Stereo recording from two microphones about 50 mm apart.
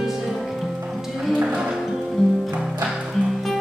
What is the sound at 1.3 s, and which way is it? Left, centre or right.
Music, right.